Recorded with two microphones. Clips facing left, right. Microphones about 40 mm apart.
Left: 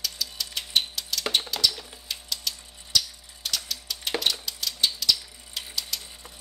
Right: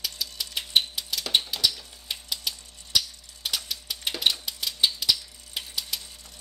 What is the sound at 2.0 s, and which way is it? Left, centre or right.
Typewriter, centre.